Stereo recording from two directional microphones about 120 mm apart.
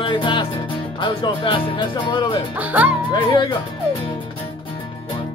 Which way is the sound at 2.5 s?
15° right (ahead or behind).